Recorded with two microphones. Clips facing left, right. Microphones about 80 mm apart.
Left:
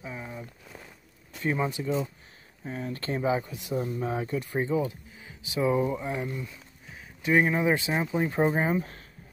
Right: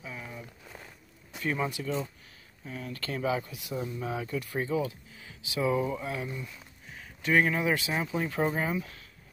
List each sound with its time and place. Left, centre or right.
0.0 s a sound: left
1.4 s speech: left
2.6 s speech: left
3.7 s speech: left
4.6 s speech: left
7.2 s speech: left